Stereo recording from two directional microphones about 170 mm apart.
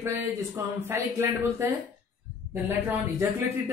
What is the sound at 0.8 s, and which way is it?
Speech, 15° right (ahead or behind).